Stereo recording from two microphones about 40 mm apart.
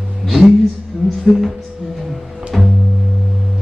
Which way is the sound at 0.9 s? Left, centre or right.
Centre.